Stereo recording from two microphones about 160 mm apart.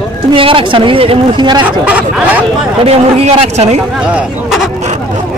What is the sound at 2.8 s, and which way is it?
Speech, 40° right (ahead or behind).